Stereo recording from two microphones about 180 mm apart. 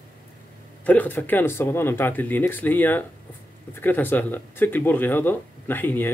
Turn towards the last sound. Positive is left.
turn(degrees=10)  # may be behind; listen again after turning